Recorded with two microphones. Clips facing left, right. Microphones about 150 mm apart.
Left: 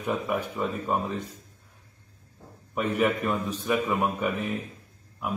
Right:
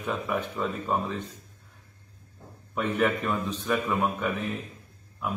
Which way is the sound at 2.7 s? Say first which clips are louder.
Left 1 dB; 5° left (ahead or behind).